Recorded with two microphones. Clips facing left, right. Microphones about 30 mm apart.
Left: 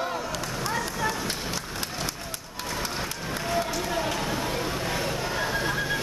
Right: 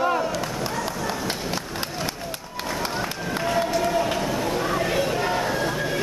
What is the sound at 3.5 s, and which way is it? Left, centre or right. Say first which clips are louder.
Run: right 6 dB; right.